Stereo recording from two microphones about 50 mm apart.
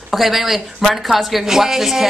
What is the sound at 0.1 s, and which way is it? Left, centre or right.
A woman's voice, centre.